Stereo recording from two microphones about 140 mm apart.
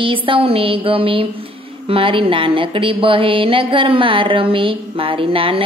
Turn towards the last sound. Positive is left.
turn(degrees=-40)  # may be behind; listen again after turning